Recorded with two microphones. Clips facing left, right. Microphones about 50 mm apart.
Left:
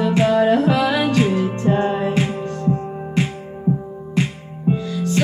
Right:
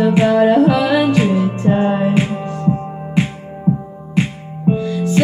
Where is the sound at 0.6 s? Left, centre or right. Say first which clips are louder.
Right 4 dB; centre.